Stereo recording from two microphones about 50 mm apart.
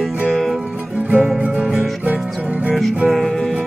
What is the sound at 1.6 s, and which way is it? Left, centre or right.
Music, centre.